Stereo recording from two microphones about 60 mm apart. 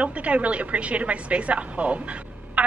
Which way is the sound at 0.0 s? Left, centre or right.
Right.